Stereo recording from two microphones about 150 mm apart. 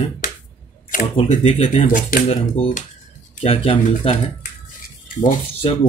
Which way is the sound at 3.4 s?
40° left (ahead or behind).